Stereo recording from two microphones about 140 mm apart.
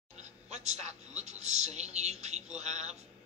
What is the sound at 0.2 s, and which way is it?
Speech, 55° right (ahead or behind).